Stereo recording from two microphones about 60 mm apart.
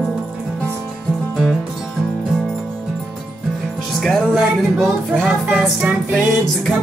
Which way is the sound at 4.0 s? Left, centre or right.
Centre.